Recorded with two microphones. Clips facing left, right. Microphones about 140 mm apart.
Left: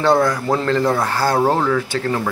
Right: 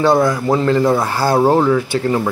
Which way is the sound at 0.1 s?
20° right (ahead or behind).